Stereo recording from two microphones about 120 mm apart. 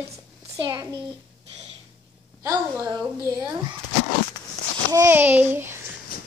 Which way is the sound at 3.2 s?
25° right (ahead or behind).